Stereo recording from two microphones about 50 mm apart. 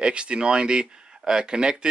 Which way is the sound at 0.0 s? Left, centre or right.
Right.